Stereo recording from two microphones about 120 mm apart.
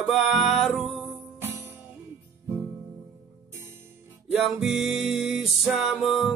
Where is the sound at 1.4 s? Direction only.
20° right (ahead or behind).